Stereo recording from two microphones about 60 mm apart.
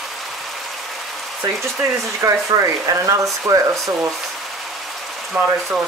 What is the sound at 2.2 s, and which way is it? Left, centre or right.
Speech, right.